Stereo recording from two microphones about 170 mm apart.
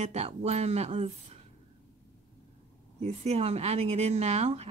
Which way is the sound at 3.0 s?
40° right (ahead or behind).